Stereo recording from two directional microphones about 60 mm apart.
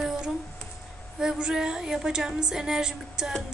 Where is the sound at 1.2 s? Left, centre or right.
Centre.